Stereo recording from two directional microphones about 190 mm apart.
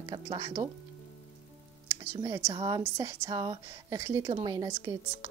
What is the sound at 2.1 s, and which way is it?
A woman's voice, 20° right (ahead or behind).